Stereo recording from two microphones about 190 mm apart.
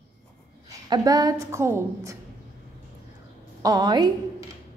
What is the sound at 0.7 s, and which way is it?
A woman's voice, 20° right (ahead or behind).